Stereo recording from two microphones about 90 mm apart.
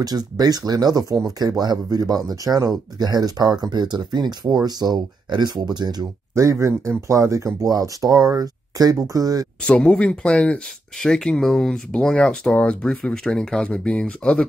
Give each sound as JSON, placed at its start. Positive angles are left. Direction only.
{"t": 0.0, "sound": "speech", "side_deg": -45}
{"t": 6.3, "sound": "speech", "side_deg": -35}
{"t": 9.6, "sound": "speech", "side_deg": 10}